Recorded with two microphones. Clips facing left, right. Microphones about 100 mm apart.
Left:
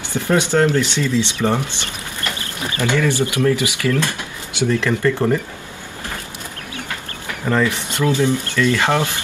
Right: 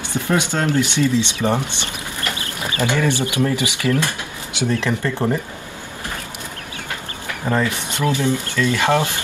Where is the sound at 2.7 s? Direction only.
20° right (ahead or behind).